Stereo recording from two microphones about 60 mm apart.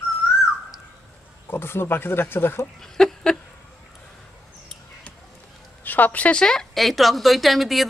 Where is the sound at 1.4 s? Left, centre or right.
Left.